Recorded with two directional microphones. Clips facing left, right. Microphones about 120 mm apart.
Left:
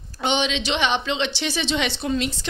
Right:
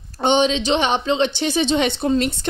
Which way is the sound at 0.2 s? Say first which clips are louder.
Right 6 dB; 40° right (ahead or behind).